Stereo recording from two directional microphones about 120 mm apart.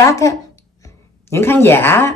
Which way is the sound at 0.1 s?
25° left (ahead or behind).